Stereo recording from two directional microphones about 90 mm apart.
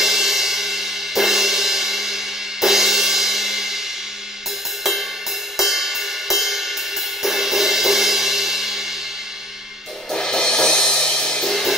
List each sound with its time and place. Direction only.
0.0 s cymbal: 5° right (ahead or behind)
5.6 s music: 5° right (ahead or behind)
10.1 s music: 5° left (ahead or behind)